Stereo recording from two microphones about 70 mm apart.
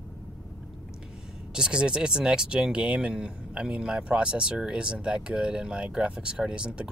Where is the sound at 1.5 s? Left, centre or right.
Centre.